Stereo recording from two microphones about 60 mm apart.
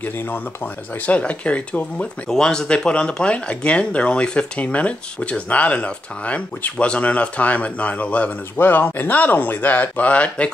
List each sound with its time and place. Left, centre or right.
1.0 s speech: left
2.2 s speech: centre